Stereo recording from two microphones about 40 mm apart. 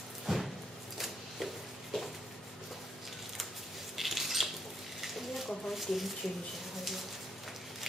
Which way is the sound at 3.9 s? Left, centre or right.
Centre.